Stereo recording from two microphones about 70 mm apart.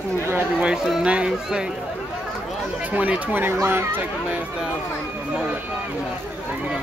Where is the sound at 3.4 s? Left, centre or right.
Right.